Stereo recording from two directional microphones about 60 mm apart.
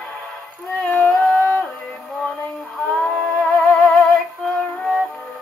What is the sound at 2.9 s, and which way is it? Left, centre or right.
Music, left.